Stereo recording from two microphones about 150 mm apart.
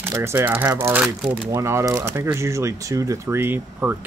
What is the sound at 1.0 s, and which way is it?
Speech, 5° right (ahead or behind).